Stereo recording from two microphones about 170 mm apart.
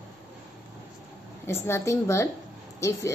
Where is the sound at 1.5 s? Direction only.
15° left (ahead or behind).